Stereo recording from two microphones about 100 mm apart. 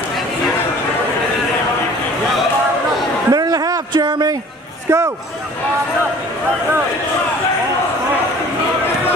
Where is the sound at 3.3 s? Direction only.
40° right (ahead or behind).